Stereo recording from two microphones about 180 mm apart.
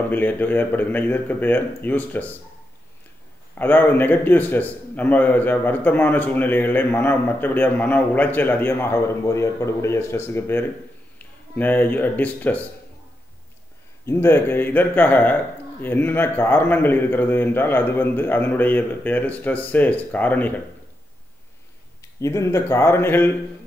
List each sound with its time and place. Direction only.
0.1 s a man's voice: 10° left (ahead or behind)
3.5 s a man's voice: 10° left (ahead or behind)
14.0 s a man's voice: 15° left (ahead or behind)
22.2 s a man's voice: 15° left (ahead or behind)